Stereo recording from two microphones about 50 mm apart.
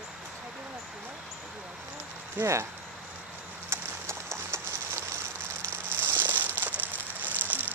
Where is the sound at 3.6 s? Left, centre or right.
Right.